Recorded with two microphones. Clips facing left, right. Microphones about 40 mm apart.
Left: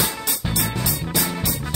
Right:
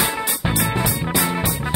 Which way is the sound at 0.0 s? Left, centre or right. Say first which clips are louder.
Right 4 dB; right.